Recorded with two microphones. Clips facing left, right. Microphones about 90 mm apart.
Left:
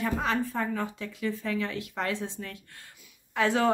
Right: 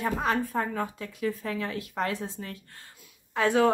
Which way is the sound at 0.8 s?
35° right (ahead or behind).